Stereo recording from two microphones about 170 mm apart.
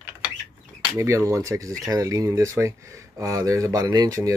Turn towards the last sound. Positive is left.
turn(degrees=-20)  # may be behind; listen again after turning